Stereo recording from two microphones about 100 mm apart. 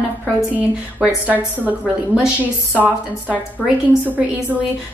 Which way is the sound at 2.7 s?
15° right (ahead or behind).